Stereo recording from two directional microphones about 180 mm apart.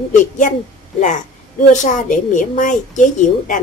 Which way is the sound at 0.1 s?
45° left (ahead or behind).